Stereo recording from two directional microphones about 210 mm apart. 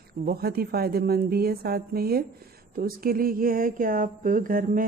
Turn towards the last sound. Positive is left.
turn(degrees=-40)  # may be behind; listen again after turning